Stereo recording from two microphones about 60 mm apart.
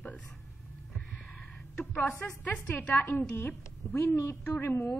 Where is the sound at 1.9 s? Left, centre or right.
Left.